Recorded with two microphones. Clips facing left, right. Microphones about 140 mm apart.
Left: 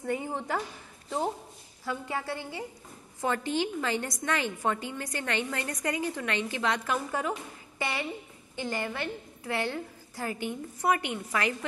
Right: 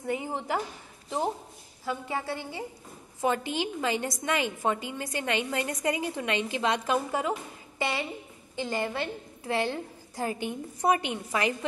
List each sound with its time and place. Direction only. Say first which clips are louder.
1.9 s a woman's voice: right 1 dB; 15° right (ahead or behind)